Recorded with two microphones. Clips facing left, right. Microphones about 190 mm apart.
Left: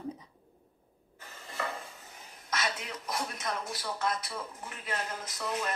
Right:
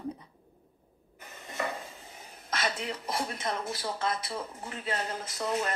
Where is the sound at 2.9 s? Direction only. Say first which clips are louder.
Right 3 dB; 30° right (ahead or behind).